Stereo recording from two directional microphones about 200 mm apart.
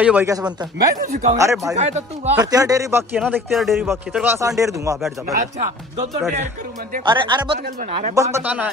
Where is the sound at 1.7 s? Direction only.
35° right (ahead or behind).